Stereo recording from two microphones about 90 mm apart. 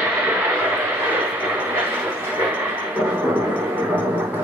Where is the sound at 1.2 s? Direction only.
20° right (ahead or behind).